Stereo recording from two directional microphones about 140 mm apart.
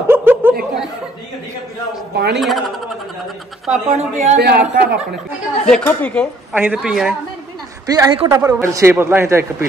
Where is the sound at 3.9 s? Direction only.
55° right (ahead or behind).